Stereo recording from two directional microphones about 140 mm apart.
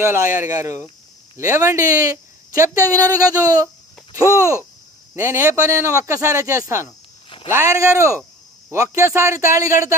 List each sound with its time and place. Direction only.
0.0 s speech: 20° right (ahead or behind)